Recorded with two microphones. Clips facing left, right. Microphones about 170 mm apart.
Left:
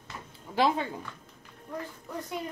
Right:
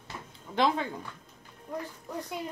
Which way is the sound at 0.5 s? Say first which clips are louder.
Left 1 dB; 5° left (ahead or behind).